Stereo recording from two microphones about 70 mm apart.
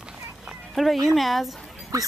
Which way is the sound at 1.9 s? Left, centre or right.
Right.